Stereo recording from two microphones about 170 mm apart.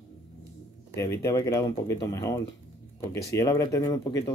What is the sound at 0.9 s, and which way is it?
Speech, 15° left (ahead or behind).